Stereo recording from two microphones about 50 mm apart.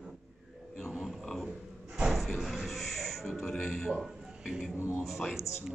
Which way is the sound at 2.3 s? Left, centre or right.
Centre.